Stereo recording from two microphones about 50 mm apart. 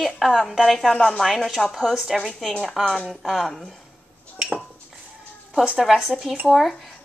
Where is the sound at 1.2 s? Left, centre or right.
Centre.